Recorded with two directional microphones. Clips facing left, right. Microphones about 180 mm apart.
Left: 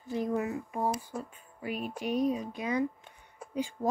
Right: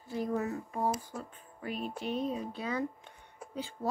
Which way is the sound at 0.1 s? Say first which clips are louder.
Left 2 dB; 20° left (ahead or behind).